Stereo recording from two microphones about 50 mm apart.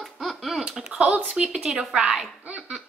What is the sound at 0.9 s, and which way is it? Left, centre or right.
Speech, right.